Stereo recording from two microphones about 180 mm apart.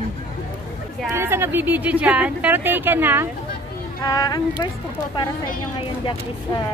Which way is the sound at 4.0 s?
20° left (ahead or behind).